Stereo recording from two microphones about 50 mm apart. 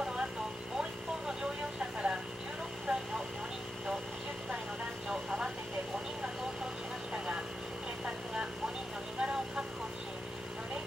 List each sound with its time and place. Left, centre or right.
0.0 s vehicle: centre
5.1 s vehicle: centre
9.2 s vehicle: centre